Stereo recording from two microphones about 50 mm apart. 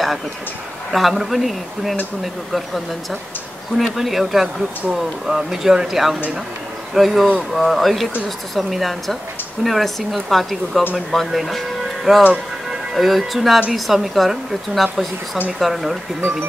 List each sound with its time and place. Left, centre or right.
0.9 s speech: centre